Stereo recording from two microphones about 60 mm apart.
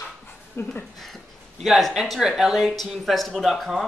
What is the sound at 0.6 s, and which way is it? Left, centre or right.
Speech, left.